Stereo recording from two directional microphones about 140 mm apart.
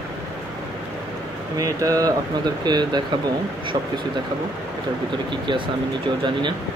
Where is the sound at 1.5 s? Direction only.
25° right (ahead or behind).